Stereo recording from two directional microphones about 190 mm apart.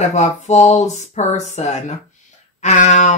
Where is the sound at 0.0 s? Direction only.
35° left (ahead or behind).